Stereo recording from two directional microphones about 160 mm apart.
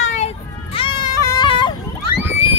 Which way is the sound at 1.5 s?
30° left (ahead or behind).